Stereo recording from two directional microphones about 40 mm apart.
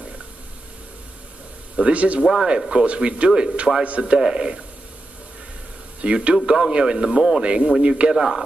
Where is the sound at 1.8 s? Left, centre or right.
Right.